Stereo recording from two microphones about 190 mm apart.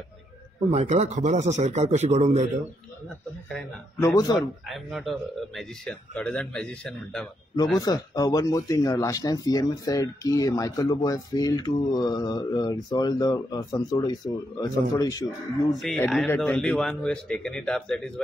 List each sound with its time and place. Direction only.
0.7 s a man's voice: 35° right (ahead or behind)
4.0 s speech: 20° left (ahead or behind)
4.4 s a man's voice: centre (ahead or behind)
7.8 s speech: 20° left (ahead or behind)
15.8 s a man's voice: centre (ahead or behind)